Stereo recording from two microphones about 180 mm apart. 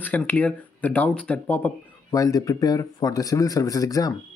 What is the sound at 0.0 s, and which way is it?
A man's voice, 10° left (ahead or behind).